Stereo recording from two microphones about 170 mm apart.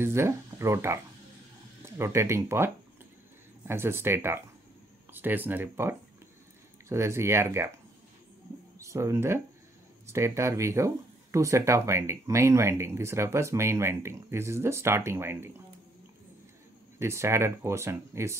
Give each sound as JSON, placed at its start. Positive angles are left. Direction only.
{"t": 0.0, "sound": "speech", "side_deg": -15}
{"t": 8.7, "sound": "speech", "side_deg": -15}
{"t": 17.0, "sound": "speech", "side_deg": -15}